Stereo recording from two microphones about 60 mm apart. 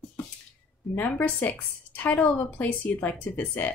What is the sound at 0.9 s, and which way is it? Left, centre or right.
Speech, left.